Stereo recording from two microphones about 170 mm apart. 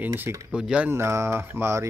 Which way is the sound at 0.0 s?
15° right (ahead or behind).